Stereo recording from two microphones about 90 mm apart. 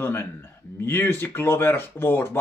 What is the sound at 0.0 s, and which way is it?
A man's voice, 25° left (ahead or behind).